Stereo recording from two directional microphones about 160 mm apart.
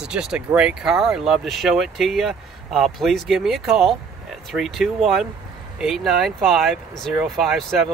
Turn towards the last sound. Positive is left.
turn(degrees=0)  # may be behind; listen again after turning